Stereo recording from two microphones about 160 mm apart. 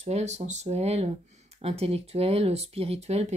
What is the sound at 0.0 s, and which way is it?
Speech, 45° right (ahead or behind).